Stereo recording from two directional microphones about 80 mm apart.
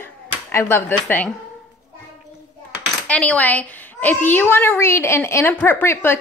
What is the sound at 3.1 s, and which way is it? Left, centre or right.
A woman's voice, centre.